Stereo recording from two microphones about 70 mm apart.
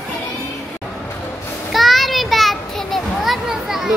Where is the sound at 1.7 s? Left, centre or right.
Centre.